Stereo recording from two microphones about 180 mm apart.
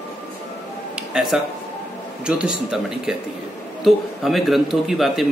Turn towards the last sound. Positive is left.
turn(degrees=0)  # may be behind; listen again after turning